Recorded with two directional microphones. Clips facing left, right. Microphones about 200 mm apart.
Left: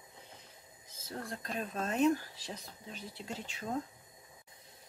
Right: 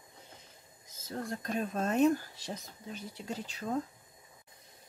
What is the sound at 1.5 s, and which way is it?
Speech, 45° right (ahead or behind).